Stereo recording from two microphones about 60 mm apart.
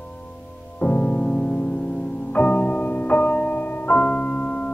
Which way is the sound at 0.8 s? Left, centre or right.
Left.